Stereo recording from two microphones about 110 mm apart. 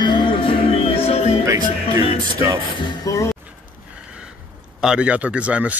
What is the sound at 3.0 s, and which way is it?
Speech, 30° left (ahead or behind).